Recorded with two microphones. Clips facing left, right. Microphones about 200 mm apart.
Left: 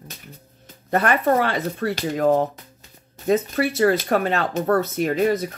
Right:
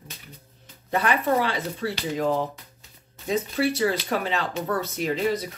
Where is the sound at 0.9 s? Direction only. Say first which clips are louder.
Left 4 dB; 50° left (ahead or behind).